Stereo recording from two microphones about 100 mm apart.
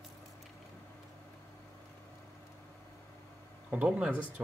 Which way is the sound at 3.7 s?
15° right (ahead or behind).